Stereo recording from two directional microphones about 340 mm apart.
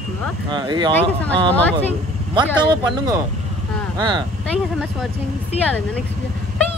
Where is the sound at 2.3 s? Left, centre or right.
Centre.